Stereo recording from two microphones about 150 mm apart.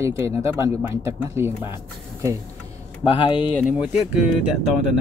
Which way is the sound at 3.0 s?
35° left (ahead or behind).